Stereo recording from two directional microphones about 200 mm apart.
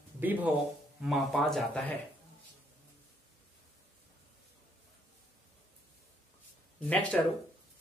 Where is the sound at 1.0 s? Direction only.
Centre (ahead or behind).